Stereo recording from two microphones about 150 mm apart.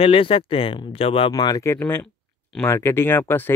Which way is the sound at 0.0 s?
35° left (ahead or behind).